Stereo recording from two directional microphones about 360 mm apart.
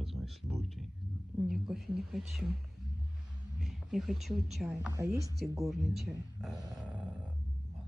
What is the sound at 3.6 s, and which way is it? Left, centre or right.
Speech, centre.